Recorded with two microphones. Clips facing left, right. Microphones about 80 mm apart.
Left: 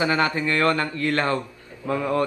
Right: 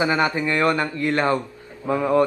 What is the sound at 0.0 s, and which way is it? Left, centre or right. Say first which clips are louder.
A man's voice: right 1 dB; right.